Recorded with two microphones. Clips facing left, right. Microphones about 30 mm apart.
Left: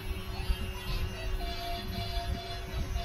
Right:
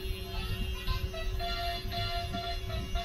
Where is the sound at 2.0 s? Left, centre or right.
Right.